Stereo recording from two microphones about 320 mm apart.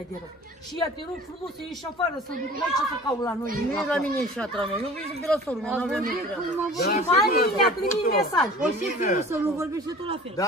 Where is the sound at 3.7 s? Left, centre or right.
Centre.